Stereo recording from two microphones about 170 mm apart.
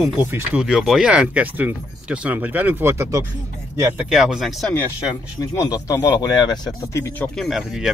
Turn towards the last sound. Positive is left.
turn(degrees=-5)  # may be behind; listen again after turning